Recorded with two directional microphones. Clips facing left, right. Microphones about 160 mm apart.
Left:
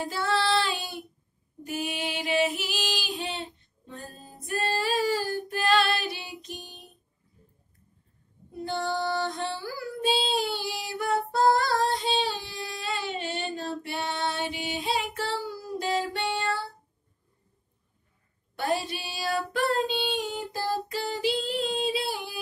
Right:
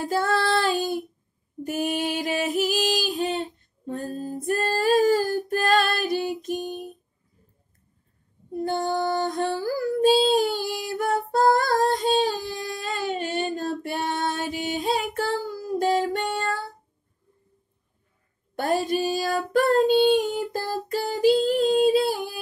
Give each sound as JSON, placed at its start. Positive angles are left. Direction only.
{"t": 0.0, "sound": "female singing", "side_deg": -45}
{"t": 1.6, "sound": "music", "side_deg": -50}
{"t": 8.5, "sound": "female singing", "side_deg": -45}
{"t": 18.6, "sound": "child singing", "side_deg": -45}